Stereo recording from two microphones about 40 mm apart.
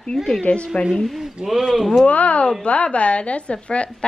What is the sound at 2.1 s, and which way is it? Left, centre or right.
A woman's voice, left.